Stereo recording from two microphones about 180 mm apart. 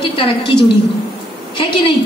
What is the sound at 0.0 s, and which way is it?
A woman's voice, 30° left (ahead or behind).